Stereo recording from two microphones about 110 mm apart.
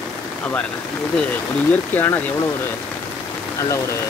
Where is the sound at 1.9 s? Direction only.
20° left (ahead or behind).